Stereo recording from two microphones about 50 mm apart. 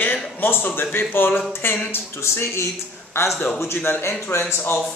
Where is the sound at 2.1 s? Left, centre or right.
Left.